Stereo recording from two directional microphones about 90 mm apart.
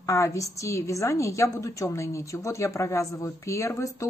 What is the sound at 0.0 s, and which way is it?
A woman's voice, 35° left (ahead or behind).